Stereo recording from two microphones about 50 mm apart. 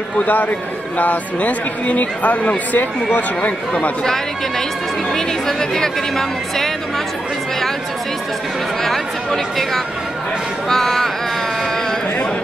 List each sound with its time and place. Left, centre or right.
0.2 s a man's voice: left
4.0 s speech: centre
8.8 s speech: centre